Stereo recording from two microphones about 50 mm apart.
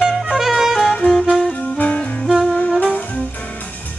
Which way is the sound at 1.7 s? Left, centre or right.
Left.